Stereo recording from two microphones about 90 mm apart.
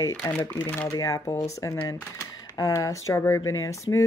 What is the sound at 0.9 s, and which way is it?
Speech, 40° left (ahead or behind).